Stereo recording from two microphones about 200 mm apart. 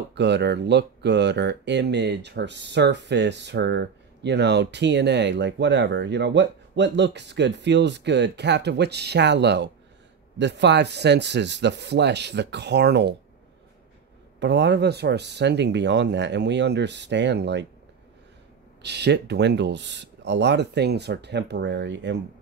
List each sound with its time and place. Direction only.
0.1 s speech: 60° right (ahead or behind)
14.4 s speech: 60° right (ahead or behind)
18.8 s speech: 55° right (ahead or behind)